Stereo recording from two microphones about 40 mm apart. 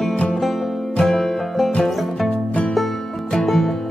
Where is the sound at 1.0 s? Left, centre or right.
Centre.